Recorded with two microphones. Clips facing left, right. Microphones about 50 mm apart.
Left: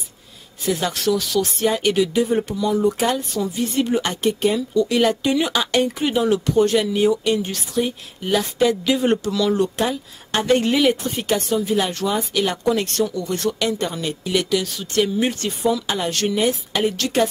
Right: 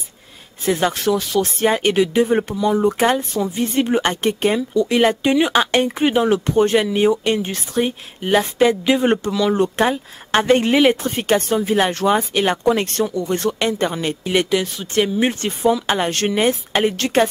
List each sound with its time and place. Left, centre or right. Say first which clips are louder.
0.7 s speech: right 3 dB; right
4.6 s speech: right 2 dB; right